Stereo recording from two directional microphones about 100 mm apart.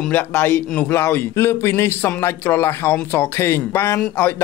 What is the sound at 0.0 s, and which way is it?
Speech, 15° left (ahead or behind).